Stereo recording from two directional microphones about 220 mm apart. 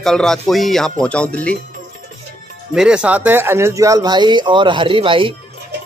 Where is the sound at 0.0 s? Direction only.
Centre (ahead or behind).